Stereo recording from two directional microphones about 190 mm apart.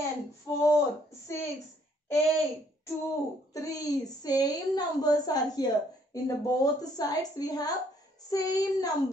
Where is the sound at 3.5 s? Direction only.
15° left (ahead or behind).